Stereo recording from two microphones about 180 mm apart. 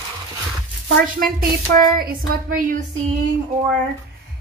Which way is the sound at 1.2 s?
50° right (ahead or behind).